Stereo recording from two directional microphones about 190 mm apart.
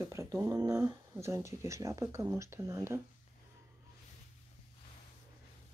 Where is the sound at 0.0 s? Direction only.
15° right (ahead or behind).